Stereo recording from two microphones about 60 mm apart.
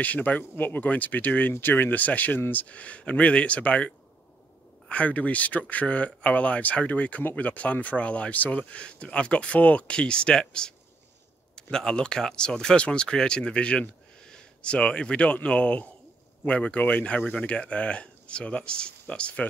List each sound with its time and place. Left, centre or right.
0.0 s speech: left
11.5 s speech: centre